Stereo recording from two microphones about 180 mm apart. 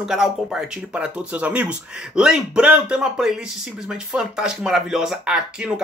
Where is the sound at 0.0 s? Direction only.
Centre (ahead or behind).